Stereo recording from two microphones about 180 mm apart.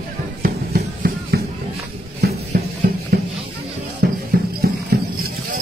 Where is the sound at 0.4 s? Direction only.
55° right (ahead or behind).